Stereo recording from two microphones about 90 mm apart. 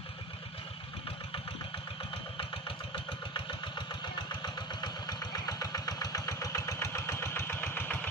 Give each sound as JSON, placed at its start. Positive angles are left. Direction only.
{"t": 2.9, "sound": "engine", "side_deg": 60}
{"t": 4.3, "sound": "vehicle", "side_deg": 50}